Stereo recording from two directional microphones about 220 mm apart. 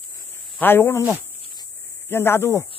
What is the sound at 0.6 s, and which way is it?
Speech, 10° left (ahead or behind).